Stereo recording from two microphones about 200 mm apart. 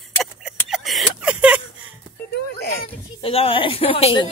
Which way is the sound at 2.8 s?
30° left (ahead or behind).